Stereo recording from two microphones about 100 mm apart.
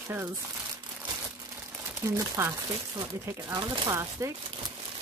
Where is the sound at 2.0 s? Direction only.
30° right (ahead or behind).